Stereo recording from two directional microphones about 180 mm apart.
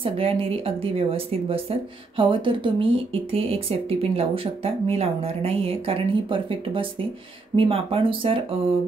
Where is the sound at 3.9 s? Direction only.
30° right (ahead or behind).